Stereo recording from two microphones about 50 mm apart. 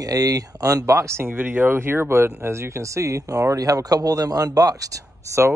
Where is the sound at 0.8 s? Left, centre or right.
Right.